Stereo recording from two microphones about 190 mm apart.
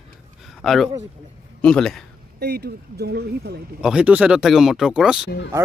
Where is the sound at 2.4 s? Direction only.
60° right (ahead or behind).